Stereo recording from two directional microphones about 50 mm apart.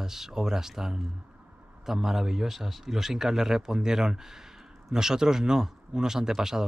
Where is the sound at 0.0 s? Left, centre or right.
Centre.